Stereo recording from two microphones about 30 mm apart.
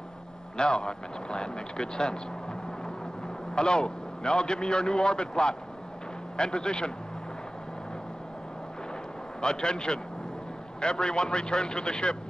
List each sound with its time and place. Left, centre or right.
0.6 s a man's voice: left
3.5 s a man's voice: left
9.4 s a man's voice: left